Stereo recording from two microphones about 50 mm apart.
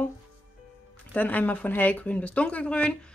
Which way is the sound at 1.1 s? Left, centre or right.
Left.